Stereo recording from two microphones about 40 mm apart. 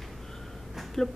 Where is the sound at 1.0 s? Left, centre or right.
Centre.